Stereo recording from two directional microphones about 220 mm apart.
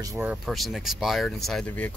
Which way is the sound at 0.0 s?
15° right (ahead or behind).